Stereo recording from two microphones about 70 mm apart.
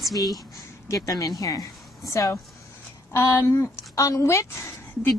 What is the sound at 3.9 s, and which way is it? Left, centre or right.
Speech, left.